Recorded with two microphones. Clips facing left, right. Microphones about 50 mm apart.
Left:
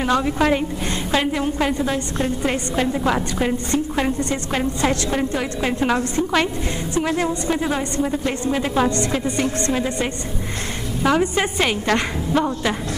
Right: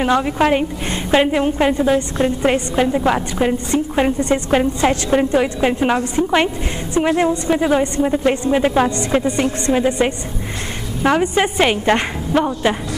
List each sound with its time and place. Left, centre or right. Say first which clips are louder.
0.0 s a woman's voice: right 3 dB; right